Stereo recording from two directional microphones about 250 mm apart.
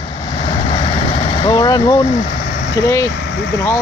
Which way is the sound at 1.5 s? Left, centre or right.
Centre.